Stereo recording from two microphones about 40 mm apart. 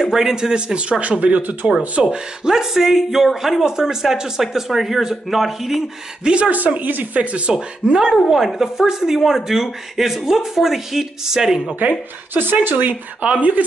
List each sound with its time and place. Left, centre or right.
0.0 s speech: centre; by 1.6 s right
2.0 s a man's voice: centre
6.2 s speech: right
6.5 s speech: right
7.2 s speech: right
7.5 s a man's voice: centre
12.4 s speech: right